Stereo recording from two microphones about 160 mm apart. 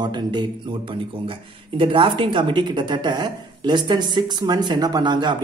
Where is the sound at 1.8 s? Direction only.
35° right (ahead or behind).